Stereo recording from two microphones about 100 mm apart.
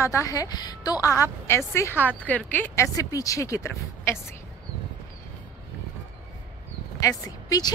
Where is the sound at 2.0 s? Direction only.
15° left (ahead or behind).